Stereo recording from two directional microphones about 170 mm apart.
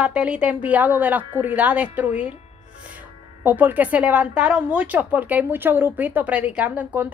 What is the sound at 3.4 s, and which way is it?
A woman's voice, 10° right (ahead or behind).